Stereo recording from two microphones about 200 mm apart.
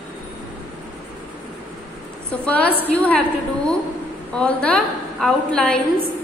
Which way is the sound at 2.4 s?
5° left (ahead or behind).